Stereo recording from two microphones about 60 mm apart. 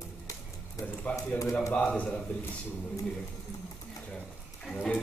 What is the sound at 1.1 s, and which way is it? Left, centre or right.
A man's voice, left.